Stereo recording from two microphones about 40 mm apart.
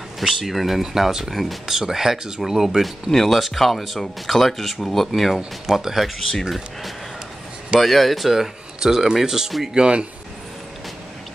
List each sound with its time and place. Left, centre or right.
0.2 s speech: centre
3.1 s speech: centre
5.7 s speech: centre
7.8 s speech: centre
9.8 s speech: right